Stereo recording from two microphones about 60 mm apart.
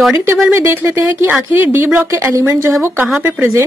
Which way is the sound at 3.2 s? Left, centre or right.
Right.